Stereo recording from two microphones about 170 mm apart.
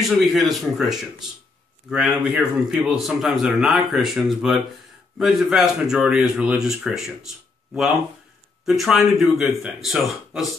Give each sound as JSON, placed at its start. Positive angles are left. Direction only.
{"t": 0.1, "sound": "a man's voice", "side_deg": 0}
{"t": 8.6, "sound": "a man's voice", "side_deg": 0}